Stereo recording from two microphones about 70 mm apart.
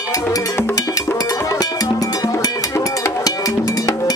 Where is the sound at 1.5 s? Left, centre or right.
Left.